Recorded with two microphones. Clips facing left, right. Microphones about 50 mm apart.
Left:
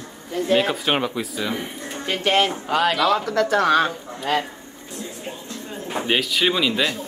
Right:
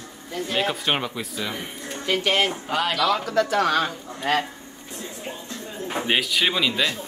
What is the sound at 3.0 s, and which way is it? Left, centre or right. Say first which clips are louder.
Speech: left 2 dB; left.